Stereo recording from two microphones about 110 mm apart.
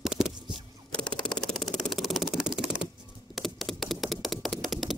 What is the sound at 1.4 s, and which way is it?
Typing, 5° left (ahead or behind).